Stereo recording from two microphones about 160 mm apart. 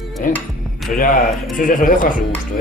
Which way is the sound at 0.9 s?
60° left (ahead or behind).